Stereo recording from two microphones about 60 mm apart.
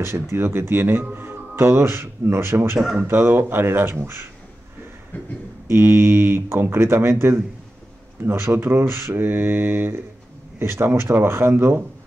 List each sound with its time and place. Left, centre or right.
0.0 s speech: right
5.7 s speech: right